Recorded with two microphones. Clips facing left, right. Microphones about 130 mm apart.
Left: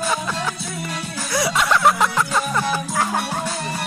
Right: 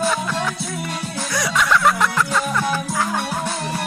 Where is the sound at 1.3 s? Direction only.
30° left (ahead or behind).